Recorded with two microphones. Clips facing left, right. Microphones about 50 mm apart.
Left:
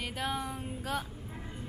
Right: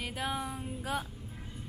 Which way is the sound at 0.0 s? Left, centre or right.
Centre.